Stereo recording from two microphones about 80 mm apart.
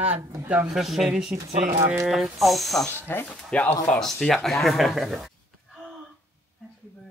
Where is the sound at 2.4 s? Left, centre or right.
Centre.